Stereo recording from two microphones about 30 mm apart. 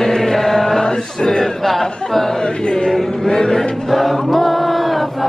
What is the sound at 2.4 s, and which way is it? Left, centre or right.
Music, left.